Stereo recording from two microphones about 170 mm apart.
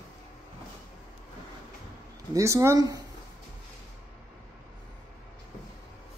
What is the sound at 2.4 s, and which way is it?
Speech, 20° right (ahead or behind).